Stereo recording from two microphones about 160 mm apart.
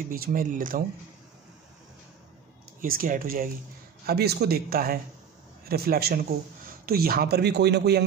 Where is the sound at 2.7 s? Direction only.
60° right (ahead or behind).